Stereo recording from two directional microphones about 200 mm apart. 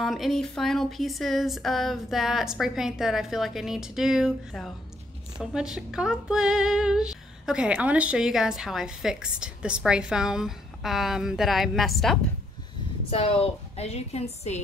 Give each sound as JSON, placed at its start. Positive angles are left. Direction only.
{"t": 0.0, "sound": "speech", "side_deg": 0}
{"t": 13.1, "sound": "a woman's voice", "side_deg": 30}